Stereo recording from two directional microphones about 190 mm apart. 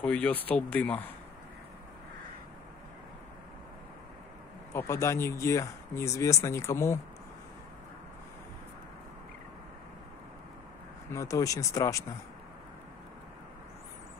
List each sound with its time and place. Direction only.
0.0 s speech: 5° left (ahead or behind)
4.7 s speech: 15° left (ahead or behind)
11.1 s speech: 15° left (ahead or behind)